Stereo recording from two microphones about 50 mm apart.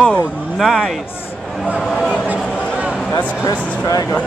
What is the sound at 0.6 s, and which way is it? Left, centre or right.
Speech, centre.